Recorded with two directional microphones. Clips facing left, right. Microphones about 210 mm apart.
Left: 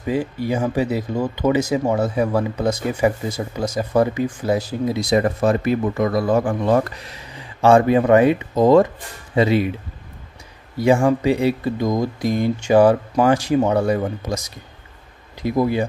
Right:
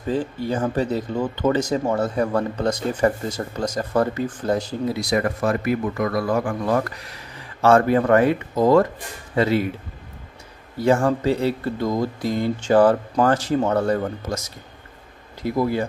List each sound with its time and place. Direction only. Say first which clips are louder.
0.0 s speech: left 2 dB; 10° left (ahead or behind)
4.9 s a man's voice: left 5 dB; 25° left (ahead or behind)
10.8 s speech: left 3 dB; 10° left (ahead or behind)